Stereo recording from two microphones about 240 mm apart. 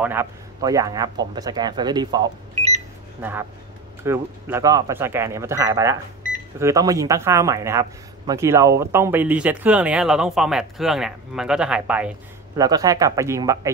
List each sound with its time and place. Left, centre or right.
0.0 s speech: centre; by 2.8 s right
3.2 s speech: centre
12.5 s speech: centre